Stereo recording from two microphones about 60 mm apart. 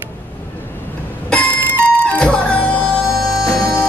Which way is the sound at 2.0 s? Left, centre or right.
Left.